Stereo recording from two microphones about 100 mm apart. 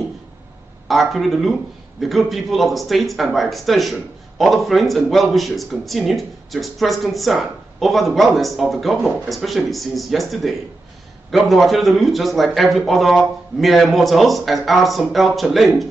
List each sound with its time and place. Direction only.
0.8 s speech: centre (ahead or behind)